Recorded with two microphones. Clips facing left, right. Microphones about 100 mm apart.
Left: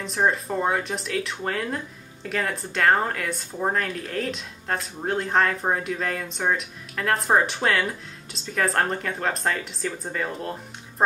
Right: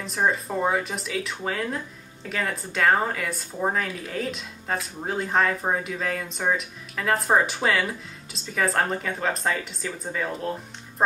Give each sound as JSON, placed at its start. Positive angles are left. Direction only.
{"t": 0.0, "sound": "speech", "side_deg": 0}